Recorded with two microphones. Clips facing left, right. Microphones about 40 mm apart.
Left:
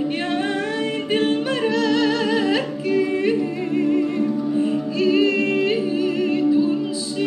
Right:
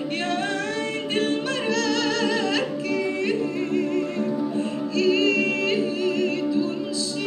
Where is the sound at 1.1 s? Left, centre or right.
Centre.